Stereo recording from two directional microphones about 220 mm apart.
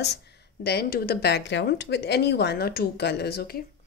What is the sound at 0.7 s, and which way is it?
A woman's voice, 45° left (ahead or behind).